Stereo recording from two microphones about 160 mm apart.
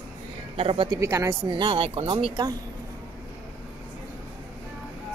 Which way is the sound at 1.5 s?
30° right (ahead or behind).